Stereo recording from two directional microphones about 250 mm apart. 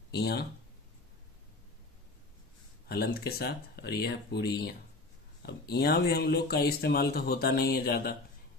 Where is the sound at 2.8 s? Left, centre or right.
Left.